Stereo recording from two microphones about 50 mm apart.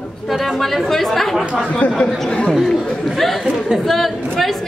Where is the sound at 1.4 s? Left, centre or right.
Right.